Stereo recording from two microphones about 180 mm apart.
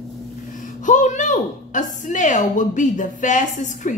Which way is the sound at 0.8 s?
45° left (ahead or behind).